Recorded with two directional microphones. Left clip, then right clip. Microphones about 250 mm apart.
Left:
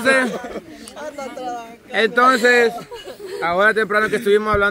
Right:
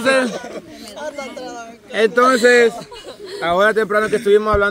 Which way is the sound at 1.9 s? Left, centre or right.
Centre.